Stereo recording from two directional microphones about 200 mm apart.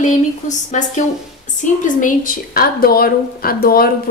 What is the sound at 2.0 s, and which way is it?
A woman's voice, 45° left (ahead or behind).